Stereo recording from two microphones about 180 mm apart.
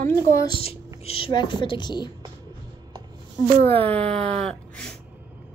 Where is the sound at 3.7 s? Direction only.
10° left (ahead or behind).